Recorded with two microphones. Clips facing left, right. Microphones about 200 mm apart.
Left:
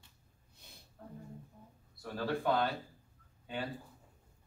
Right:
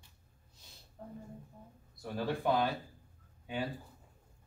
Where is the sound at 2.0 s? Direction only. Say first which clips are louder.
Right 1 dB; 15° right (ahead or behind).